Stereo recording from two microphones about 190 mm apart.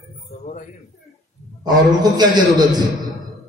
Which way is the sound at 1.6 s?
20° right (ahead or behind).